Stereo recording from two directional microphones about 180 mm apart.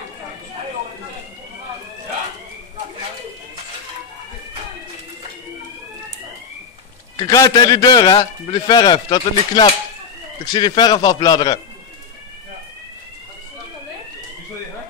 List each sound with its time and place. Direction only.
7.2 s a man's voice: 20° left (ahead or behind)